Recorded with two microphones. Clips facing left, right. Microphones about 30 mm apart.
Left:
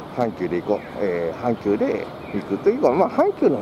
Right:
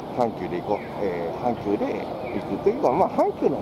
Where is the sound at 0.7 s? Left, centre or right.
Left.